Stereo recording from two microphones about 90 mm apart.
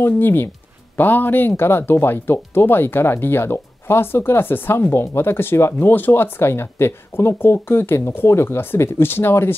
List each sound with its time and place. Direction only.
0.0 s speech: 25° left (ahead or behind)